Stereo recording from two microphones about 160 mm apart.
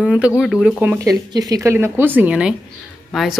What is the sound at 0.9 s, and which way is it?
Speech, 25° right (ahead or behind).